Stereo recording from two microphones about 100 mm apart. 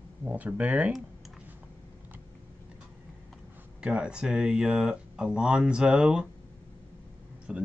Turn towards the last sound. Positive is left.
turn(degrees=-10)  # may be behind; listen again after turning